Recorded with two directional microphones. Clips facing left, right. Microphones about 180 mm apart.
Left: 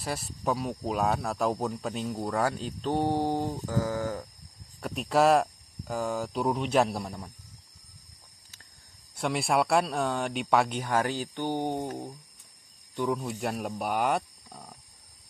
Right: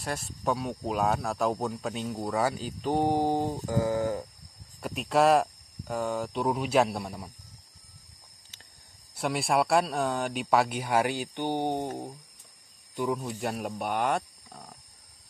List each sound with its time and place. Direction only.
0.0 s speech: centre (ahead or behind); by 3.5 s 15° right (ahead or behind)
3.6 s a sound: 20° right (ahead or behind)
4.8 s speech: centre (ahead or behind)
9.1 s speech: centre (ahead or behind); by 12.1 s 20° right (ahead or behind)
12.9 s speech: 5° right (ahead or behind)